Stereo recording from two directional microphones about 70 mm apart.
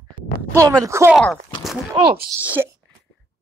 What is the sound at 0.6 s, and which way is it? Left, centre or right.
Speech, right.